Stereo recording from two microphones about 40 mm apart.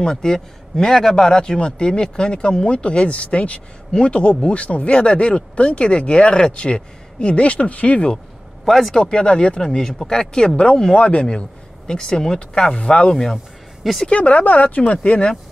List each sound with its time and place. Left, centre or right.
0.0 s speech: centre; by 8.1 s left
8.6 s speech: centre
8.9 s speech: left
13.1 s speech: centre
14.0 s speech: left